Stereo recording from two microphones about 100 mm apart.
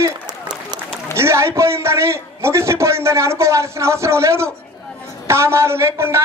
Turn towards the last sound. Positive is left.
turn(degrees=-25)  # may be behind; listen again after turning